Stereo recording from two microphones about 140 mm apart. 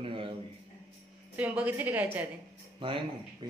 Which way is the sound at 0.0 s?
40° right (ahead or behind).